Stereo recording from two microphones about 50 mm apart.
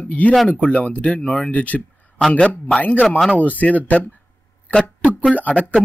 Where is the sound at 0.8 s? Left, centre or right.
Left.